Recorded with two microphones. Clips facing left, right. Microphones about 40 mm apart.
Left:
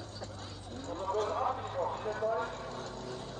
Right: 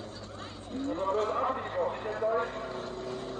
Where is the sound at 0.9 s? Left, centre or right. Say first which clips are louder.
Right 3 dB; right.